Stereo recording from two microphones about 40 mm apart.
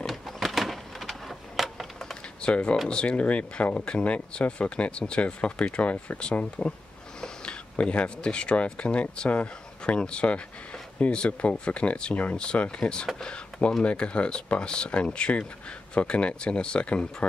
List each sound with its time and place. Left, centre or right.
0.0 s a sound: centre
2.4 s speech: left
7.7 s speech: left